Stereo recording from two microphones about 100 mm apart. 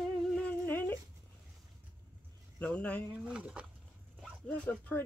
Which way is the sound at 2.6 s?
15° left (ahead or behind).